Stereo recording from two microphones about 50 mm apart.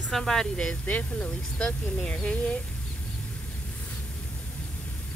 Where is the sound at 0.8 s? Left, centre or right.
Left.